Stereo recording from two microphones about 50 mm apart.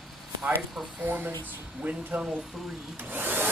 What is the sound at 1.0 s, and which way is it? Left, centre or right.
Speech, right.